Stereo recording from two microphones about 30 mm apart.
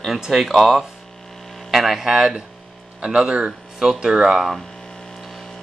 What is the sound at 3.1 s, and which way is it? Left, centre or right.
Speech, right.